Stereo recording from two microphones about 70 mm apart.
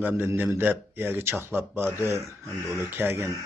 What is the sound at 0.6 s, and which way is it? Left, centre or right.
Speech, right.